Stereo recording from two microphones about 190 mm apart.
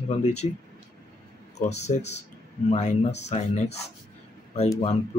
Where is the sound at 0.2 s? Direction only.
35° left (ahead or behind).